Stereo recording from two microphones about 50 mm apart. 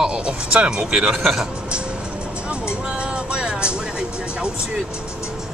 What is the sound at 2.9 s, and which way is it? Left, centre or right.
Music, centre.